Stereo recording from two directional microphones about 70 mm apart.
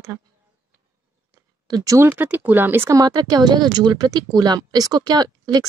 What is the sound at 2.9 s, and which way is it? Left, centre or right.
Speech, right.